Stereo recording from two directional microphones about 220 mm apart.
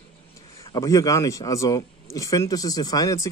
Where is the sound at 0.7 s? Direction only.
15° left (ahead or behind).